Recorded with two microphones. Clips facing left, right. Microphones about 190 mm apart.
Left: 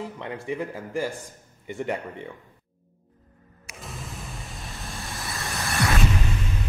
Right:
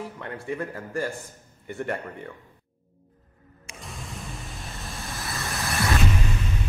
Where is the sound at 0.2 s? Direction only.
15° left (ahead or behind).